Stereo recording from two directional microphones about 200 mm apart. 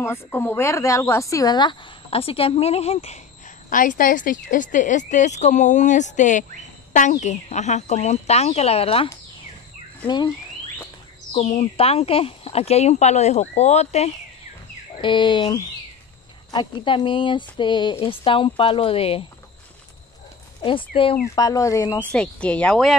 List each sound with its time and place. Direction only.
0.0 s speech: 10° left (ahead or behind); by 3.2 s 30° left (ahead or behind)
3.7 s speech: 40° left (ahead or behind); by 10.3 s 20° left (ahead or behind)
11.3 s speech: 30° left (ahead or behind)
20.6 s speech: 25° left (ahead or behind); by 22.9 s 5° left (ahead or behind)